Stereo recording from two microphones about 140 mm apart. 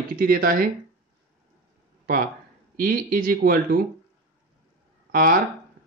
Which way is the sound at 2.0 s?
90° right.